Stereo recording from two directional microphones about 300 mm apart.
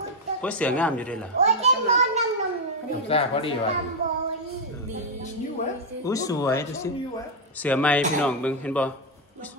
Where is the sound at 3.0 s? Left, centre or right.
Centre.